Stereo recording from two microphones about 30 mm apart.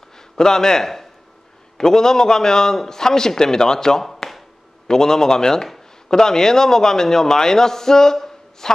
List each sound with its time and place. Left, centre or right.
0.4 s a man's voice: centre
4.2 s a sound: left
4.8 s a man's voice: centre